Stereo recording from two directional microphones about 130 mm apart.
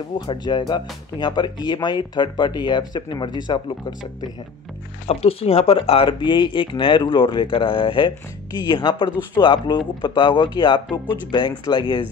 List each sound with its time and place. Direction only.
0.3 s speech: 35° left (ahead or behind)
5.0 s speech: 50° left (ahead or behind)